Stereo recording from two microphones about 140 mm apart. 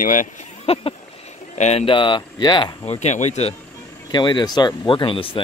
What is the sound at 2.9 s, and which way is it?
Speech, 55° left (ahead or behind).